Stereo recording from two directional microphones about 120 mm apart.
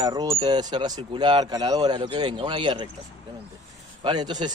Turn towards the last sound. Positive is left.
turn(degrees=-35)  # may be behind; listen again after turning